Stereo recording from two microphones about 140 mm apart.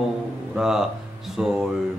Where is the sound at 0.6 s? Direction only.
5° right (ahead or behind).